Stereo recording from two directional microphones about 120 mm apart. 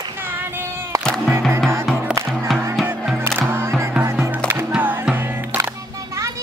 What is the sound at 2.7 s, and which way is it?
Music, 5° right (ahead or behind).